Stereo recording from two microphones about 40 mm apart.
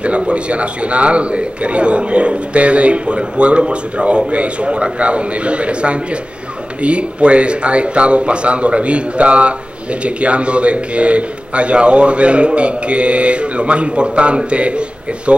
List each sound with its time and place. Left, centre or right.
0.3 s a man's voice: right